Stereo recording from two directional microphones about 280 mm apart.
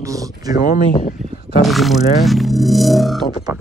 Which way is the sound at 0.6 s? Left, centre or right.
Left.